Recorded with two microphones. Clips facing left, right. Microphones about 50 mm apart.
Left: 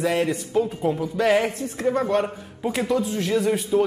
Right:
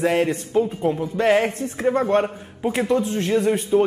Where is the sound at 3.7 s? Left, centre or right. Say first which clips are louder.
Right 3 dB; centre.